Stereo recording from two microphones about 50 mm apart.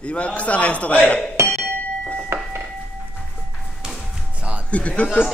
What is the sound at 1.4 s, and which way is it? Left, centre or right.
Music, right.